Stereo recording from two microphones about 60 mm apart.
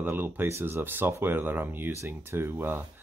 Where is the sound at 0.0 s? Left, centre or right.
Right.